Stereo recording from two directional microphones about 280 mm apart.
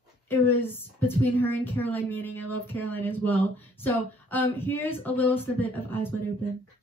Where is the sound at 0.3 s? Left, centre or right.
Centre.